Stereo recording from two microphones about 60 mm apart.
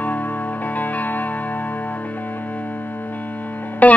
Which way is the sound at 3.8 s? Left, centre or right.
Left.